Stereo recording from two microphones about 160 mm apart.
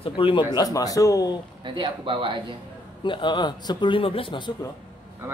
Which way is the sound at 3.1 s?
30° left (ahead or behind).